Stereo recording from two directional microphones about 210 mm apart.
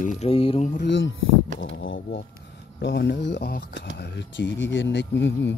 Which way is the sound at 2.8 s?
55° left (ahead or behind).